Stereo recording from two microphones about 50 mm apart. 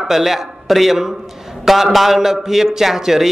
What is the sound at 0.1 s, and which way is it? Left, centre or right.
A man's voice, centre.